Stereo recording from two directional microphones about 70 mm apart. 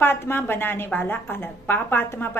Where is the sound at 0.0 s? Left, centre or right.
Left.